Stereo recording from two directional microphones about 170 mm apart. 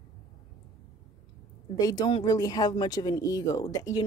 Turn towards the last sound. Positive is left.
turn(degrees=20)  # may be behind; listen again after turning